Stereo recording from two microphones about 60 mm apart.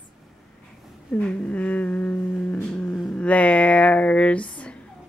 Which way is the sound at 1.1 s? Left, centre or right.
Left.